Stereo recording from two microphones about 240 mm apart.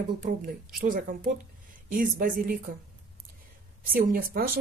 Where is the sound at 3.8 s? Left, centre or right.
Right.